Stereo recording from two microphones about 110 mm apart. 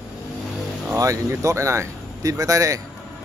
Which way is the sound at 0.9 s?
25° right (ahead or behind).